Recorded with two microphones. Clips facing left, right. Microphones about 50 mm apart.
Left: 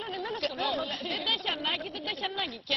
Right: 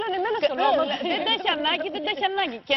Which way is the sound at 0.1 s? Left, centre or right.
Right.